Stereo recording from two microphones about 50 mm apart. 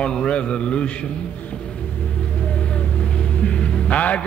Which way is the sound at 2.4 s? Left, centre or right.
Left.